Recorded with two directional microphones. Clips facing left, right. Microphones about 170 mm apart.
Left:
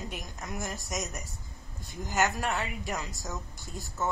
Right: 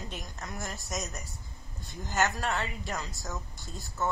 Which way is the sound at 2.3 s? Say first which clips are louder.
Left 1 dB; 15° left (ahead or behind).